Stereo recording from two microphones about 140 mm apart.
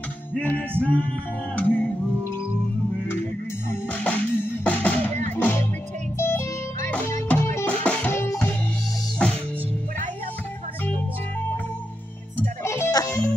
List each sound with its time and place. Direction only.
0.4 s music: 10° left (ahead or behind)
3.9 s music: 10° left (ahead or behind)
12.6 s music: 20° left (ahead or behind)